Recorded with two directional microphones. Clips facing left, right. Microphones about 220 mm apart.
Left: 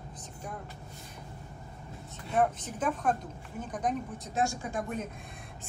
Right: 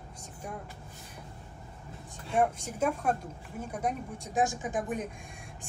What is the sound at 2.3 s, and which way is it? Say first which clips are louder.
Speech: even; 10° right (ahead or behind).